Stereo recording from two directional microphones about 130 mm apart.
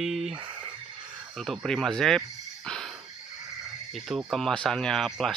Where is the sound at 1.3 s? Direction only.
Centre (ahead or behind).